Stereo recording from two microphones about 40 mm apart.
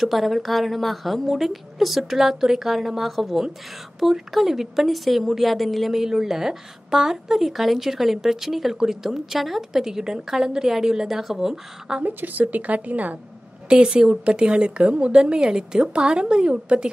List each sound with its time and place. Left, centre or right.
0.0 s a woman's voice: centre
12.0 s a woman's voice: right
13.7 s a woman's voice: right